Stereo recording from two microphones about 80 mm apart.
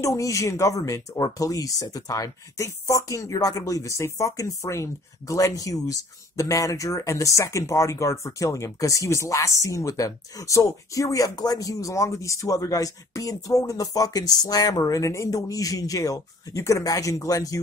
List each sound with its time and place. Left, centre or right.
0.0 s speech: left